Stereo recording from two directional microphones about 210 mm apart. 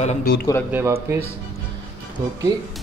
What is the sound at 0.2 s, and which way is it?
Speech, 45° left (ahead or behind).